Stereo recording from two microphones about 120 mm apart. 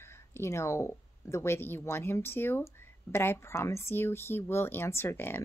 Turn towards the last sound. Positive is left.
turn(degrees=20)  # may be behind; listen again after turning